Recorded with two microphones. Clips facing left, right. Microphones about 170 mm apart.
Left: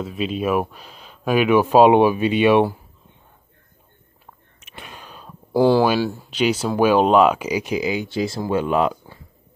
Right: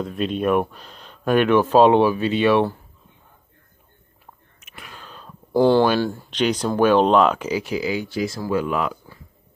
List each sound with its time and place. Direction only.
0.0 s speech: 5° left (ahead or behind)
4.6 s a sound: 30° left (ahead or behind)
4.9 s speech: 10° left (ahead or behind)